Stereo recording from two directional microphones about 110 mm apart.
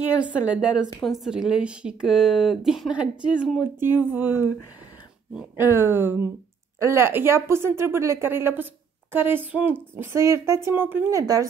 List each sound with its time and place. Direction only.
0.2 s a woman's voice: 10° right (ahead or behind)
5.6 s speech: 20° right (ahead or behind)
11.1 s speech: 30° right (ahead or behind)